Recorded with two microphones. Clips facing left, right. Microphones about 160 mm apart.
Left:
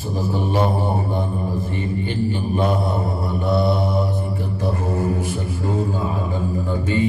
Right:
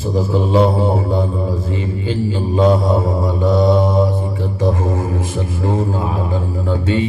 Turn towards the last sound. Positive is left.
turn(degrees=-90)